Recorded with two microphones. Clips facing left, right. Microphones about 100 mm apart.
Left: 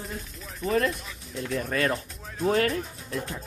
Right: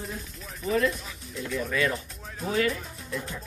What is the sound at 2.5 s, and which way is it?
Speech, 45° left (ahead or behind).